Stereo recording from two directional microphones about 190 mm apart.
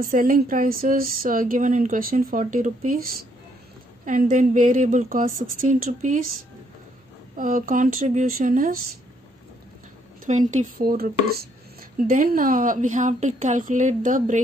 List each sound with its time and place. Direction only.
0.0 s speech: 50° right (ahead or behind)
7.3 s speech: 45° right (ahead or behind)
10.2 s speech: 40° right (ahead or behind)